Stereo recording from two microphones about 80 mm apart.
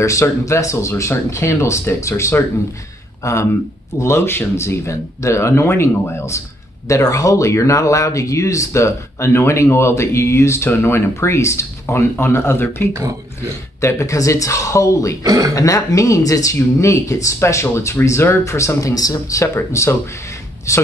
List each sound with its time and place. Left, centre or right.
0.0 s speech: left
15.2 s speech: right
15.5 s speech: left